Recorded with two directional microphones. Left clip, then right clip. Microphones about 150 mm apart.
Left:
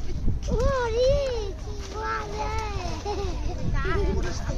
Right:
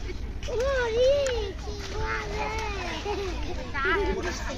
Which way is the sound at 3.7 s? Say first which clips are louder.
Right 5 dB; 90° left.